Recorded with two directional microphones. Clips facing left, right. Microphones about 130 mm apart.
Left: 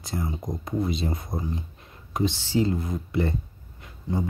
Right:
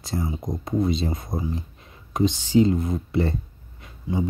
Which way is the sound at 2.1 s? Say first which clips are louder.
Right 5 dB; 20° right (ahead or behind).